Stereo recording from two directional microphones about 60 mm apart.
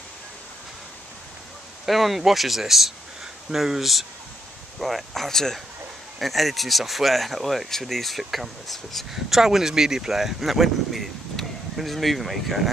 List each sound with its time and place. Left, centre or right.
1.9 s speech: centre